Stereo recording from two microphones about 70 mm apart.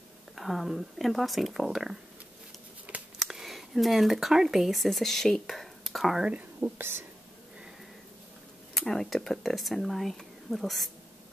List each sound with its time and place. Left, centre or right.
0.4 s speech: centre
3.2 s speech: centre
6.2 s speech: centre
6.8 s speech: right
8.7 s speech: centre